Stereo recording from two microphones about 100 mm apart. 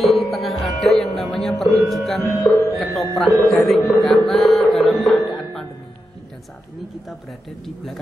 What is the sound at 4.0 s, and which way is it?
Music, centre (ahead or behind).